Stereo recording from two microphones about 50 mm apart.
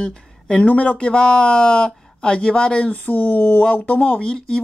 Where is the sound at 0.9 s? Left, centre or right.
Centre.